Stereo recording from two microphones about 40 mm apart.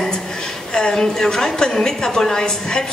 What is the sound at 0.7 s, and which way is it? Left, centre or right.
A woman's voice, centre.